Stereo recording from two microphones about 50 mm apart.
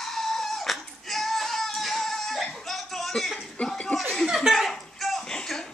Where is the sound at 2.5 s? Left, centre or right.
Centre.